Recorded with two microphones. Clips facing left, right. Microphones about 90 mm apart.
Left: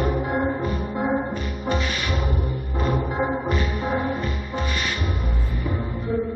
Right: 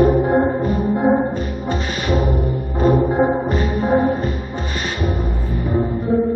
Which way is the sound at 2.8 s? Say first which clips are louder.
Right 9 dB; 35° right (ahead or behind).